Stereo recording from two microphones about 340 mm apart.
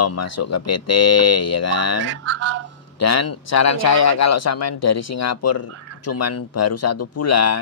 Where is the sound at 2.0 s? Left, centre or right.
Right.